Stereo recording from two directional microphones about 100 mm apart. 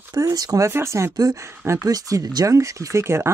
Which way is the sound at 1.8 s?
35° right (ahead or behind).